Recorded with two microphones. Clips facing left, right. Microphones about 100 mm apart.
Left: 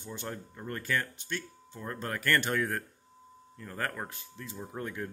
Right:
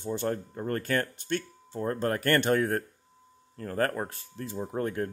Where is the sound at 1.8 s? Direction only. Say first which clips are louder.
Right 7 dB; 40° right (ahead or behind).